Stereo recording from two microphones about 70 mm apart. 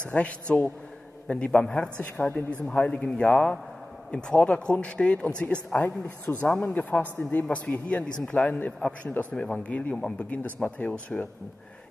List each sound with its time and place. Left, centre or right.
0.0 s a man's voice: centre
5.9 s a man's voice: left
9.9 s speech: centre
10.3 s a man's voice: left